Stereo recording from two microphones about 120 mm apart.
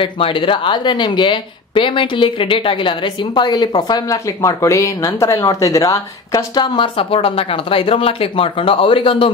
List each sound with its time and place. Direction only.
0.0 s speech: 45° left (ahead or behind)